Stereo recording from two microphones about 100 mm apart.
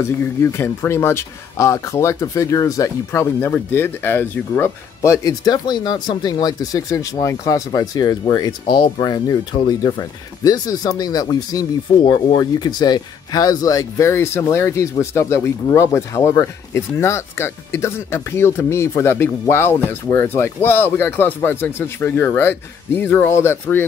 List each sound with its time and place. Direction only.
0.0 s speech: 25° left (ahead or behind)